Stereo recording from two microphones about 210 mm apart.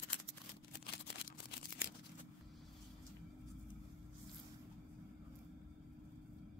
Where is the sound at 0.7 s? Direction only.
50° left (ahead or behind).